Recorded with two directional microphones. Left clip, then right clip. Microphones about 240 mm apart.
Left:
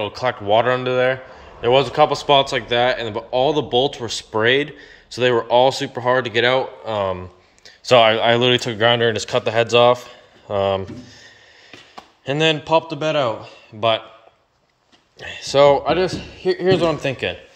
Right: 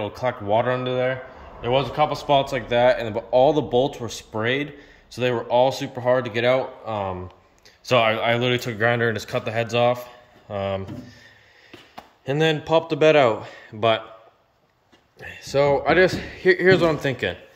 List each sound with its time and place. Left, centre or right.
0.0 s speech: centre
12.3 s a man's voice: centre
15.1 s speech: centre
15.8 s speech: centre